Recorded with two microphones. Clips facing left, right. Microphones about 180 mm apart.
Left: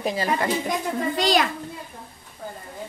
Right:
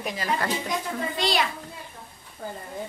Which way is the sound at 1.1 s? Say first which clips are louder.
Left 5 dB; 40° left (ahead or behind).